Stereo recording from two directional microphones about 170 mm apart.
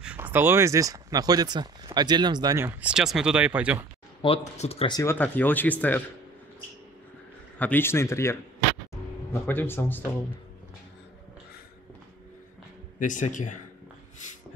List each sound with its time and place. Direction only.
0.0 s speech: 10° right (ahead or behind); by 2.6 s 25° right (ahead or behind)
2.6 s speech: 5° right (ahead or behind)
4.2 s speech: 35° left (ahead or behind)
4.9 s speech: 10° left (ahead or behind)
7.5 s speech: 10° left (ahead or behind)
13.0 s speech: 50° left (ahead or behind)